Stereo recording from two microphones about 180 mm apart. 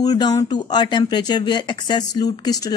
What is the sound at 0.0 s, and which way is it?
Speech, 20° left (ahead or behind).